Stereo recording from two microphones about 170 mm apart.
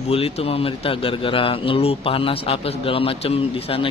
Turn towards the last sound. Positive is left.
turn(degrees=35)  # may be behind; listen again after turning